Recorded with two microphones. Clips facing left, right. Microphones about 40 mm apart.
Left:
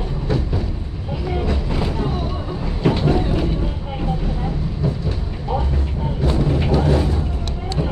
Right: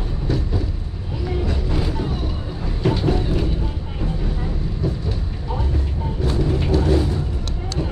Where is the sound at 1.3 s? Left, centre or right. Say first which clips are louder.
Left 1 dB; centre.